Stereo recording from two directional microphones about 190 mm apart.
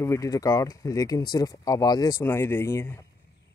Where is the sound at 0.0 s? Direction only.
15° left (ahead or behind).